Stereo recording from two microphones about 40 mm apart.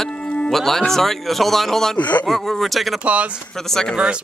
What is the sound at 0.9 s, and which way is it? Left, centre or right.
Speech, centre.